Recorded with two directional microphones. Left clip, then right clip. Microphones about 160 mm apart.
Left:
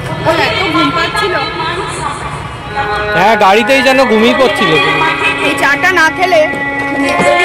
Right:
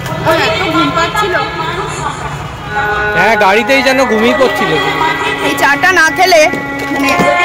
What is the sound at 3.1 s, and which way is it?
Speech, 30° left (ahead or behind).